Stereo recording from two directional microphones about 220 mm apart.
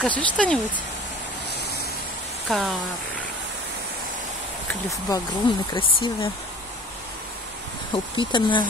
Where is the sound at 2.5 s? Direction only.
Centre (ahead or behind).